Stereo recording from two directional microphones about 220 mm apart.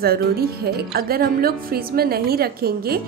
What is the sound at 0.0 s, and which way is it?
A woman's voice, 45° right (ahead or behind).